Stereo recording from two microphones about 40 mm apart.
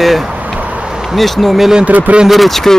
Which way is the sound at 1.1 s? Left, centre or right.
Centre.